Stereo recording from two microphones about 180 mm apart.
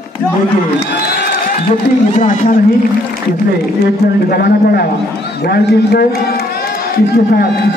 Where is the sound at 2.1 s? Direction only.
45° left (ahead or behind).